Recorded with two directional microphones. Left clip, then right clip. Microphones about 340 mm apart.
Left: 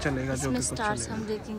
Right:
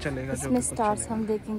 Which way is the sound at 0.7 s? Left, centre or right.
Right.